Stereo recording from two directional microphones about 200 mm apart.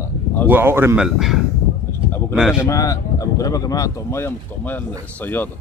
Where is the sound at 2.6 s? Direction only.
15° left (ahead or behind).